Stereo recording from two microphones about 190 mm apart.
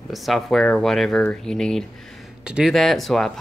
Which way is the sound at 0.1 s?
Centre (ahead or behind).